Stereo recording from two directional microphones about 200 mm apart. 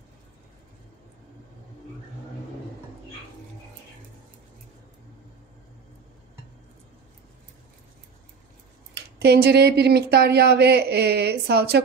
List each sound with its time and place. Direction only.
8.9 s speech: 55° right (ahead or behind)